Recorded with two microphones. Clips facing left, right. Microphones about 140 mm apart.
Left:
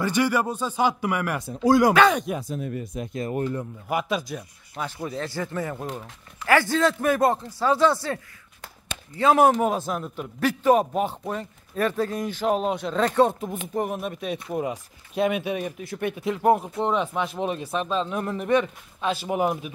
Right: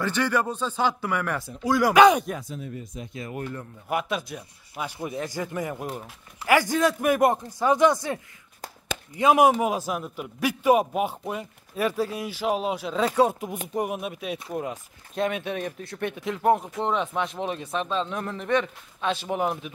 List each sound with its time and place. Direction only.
0.0 s speech: 10° left (ahead or behind)
1.5 s speech: 40° left (ahead or behind)
2.0 s a man's voice: 10° right (ahead or behind)
2.5 s speech: 60° left (ahead or behind); by 3.3 s 45° left (ahead or behind)
3.3 s speech: 25° left (ahead or behind)
3.9 s a man's voice: centre (ahead or behind)
14.5 s speech: 5° left (ahead or behind)